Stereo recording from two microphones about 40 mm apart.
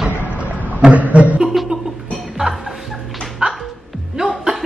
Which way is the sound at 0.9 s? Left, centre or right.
Right.